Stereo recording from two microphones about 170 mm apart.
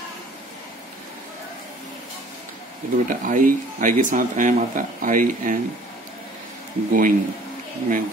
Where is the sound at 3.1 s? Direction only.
55° right (ahead or behind).